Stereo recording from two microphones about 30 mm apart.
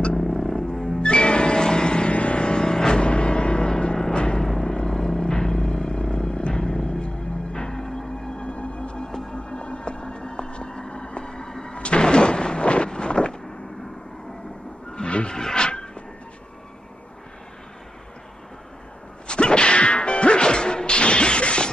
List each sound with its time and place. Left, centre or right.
0.2 s music: centre
1.0 s music: left
3.0 s music: left
5.9 s vehicle: left
6.5 s music: left
7.6 s music: centre
8.4 s music: left
11.7 s a sound: left
15.0 s wild animals: left
15.5 s a sound: left
19.2 s whack: left